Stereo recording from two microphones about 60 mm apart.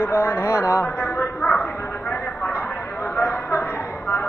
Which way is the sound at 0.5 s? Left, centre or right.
Left.